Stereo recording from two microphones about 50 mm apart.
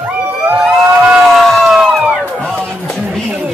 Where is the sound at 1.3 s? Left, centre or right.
Centre.